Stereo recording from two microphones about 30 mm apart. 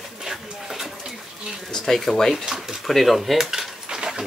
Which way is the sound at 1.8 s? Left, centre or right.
Centre.